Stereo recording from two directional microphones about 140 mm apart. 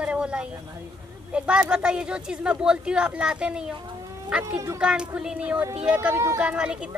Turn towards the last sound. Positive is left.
turn(degrees=-5)  # may be behind; listen again after turning